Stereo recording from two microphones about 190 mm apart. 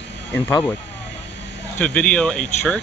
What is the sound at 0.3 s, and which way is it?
Speech, 10° left (ahead or behind).